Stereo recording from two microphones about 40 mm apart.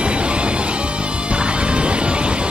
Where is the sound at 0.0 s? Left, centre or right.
Right.